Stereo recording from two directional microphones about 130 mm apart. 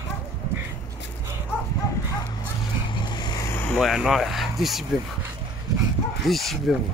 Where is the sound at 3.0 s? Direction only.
35° left (ahead or behind).